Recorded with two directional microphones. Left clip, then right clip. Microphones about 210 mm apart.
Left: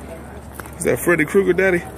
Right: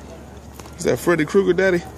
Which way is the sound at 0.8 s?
15° right (ahead or behind).